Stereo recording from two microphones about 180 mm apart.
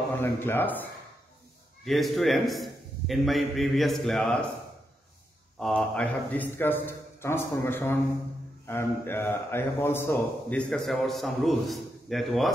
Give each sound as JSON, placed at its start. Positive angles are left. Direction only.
{"t": 0.2, "sound": "a man's voice", "side_deg": 10}
{"t": 1.9, "sound": "a man's voice", "side_deg": 0}
{"t": 5.6, "sound": "a man's voice", "side_deg": 5}
{"t": 10.7, "sound": "a man's voice", "side_deg": 0}